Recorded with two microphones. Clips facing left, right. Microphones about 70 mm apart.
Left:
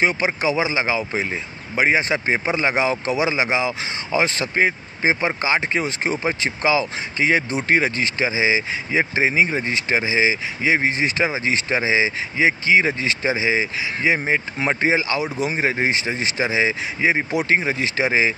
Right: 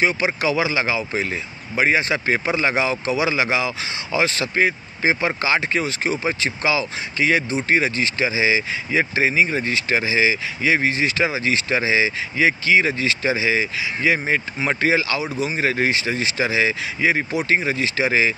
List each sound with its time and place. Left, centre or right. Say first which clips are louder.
0.1 s speech: even; left